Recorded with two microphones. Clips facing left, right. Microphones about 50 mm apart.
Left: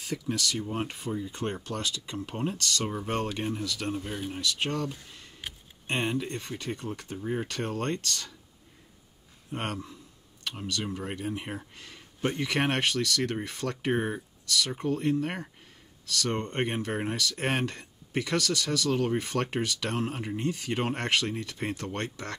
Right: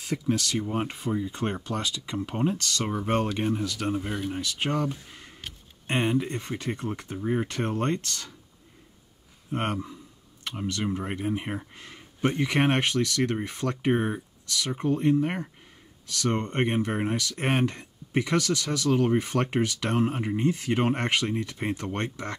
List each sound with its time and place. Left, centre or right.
0.1 s speech: right
9.5 s speech: right